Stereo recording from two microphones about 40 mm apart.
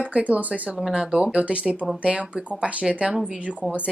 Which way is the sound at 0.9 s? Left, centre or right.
Right.